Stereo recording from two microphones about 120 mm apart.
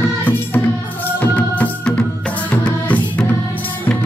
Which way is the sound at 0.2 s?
15° left (ahead or behind).